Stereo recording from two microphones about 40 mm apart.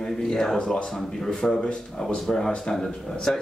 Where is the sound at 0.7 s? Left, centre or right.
Left.